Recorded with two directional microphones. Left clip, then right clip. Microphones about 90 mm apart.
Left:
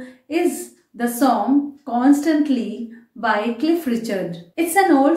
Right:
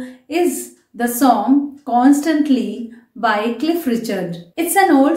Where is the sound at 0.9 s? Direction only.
20° right (ahead or behind).